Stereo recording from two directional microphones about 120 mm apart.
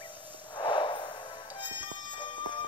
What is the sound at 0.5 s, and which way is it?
Music, 40° left (ahead or behind).